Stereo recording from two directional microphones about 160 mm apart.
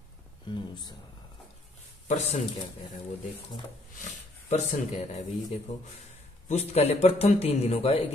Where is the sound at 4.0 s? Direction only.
45° left (ahead or behind).